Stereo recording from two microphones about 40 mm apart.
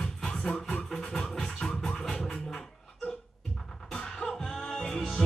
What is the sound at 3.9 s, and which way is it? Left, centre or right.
Music, centre.